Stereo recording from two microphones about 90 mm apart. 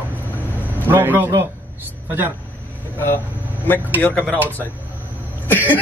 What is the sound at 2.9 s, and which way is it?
Speech, 20° left (ahead or behind).